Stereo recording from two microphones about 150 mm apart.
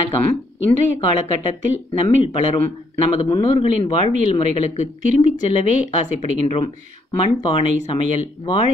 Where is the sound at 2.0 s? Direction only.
40° left (ahead or behind).